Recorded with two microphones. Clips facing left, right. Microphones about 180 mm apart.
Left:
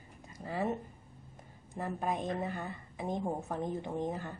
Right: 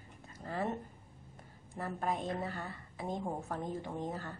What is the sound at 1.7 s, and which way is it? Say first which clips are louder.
A woman's voice: left 1 dB; 15° left (ahead or behind).